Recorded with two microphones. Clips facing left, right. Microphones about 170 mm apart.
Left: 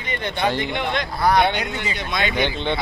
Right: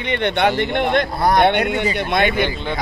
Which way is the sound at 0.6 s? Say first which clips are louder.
Right 6 dB; 55° right (ahead or behind).